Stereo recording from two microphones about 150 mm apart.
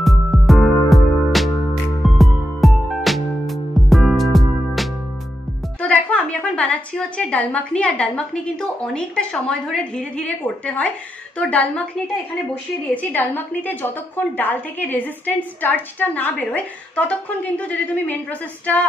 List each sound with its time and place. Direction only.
0.0 s music: centre (ahead or behind)
5.8 s a woman's voice: 10° left (ahead or behind)
12.9 s a woman's voice: 10° left (ahead or behind)